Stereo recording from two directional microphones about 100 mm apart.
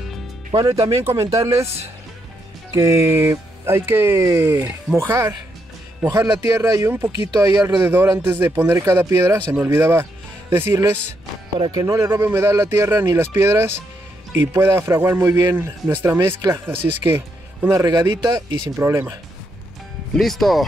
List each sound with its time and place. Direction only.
0.7 s speech: 30° right (ahead or behind)
2.7 s speech: 30° right (ahead or behind)
7.1 s speech: 40° right (ahead or behind)
7.8 s speech: 20° right (ahead or behind)
17.8 s speech: 40° right (ahead or behind)
18.8 s speech: 30° right (ahead or behind)
20.2 s speech: centre (ahead or behind)